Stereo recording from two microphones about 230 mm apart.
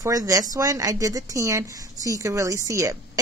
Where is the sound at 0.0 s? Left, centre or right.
Centre.